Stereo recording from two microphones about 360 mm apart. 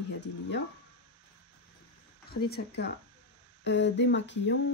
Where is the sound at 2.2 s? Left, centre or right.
Left.